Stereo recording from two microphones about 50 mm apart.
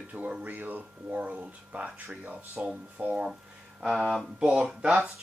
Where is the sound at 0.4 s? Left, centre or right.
Right.